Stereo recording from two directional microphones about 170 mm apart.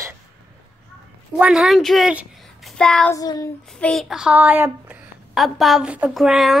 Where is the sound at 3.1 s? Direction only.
20° left (ahead or behind).